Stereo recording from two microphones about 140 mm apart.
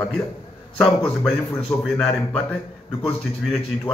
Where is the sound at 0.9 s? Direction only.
20° left (ahead or behind).